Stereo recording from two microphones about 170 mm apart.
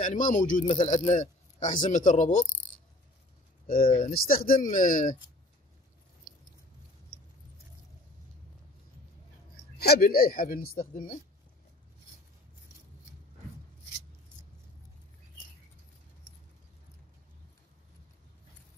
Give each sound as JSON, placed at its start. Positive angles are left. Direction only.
{"t": 0.0, "sound": "a man's voice", "side_deg": 50}
{"t": 3.6, "sound": "a man's voice", "side_deg": 55}
{"t": 9.8, "sound": "speech", "side_deg": 65}